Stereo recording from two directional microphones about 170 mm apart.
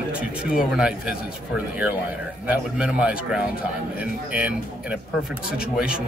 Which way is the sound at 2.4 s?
10° right (ahead or behind).